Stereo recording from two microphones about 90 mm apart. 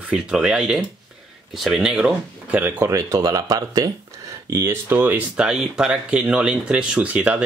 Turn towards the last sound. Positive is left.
turn(degrees=-15)  # may be behind; listen again after turning